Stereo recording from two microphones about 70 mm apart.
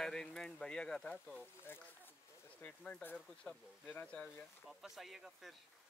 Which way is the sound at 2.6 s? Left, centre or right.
Centre.